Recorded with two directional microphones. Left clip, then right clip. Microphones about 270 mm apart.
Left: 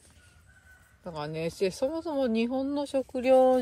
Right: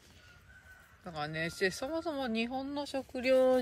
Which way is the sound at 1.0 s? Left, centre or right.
Centre.